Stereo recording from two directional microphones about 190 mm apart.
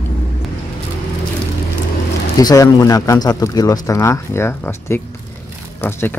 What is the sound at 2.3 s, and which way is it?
Speech, 20° left (ahead or behind).